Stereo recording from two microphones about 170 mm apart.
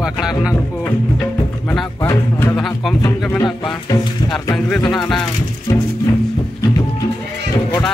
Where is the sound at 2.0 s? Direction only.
15° left (ahead or behind).